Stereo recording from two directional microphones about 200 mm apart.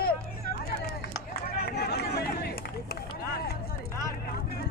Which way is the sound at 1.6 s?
55° left (ahead or behind).